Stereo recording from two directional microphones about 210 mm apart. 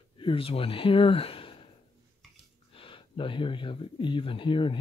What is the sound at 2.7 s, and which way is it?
Speech, 25° left (ahead or behind).